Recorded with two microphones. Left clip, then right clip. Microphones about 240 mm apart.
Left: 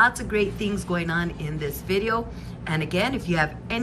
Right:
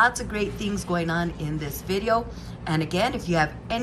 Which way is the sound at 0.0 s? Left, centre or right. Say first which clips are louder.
Left 2 dB; centre.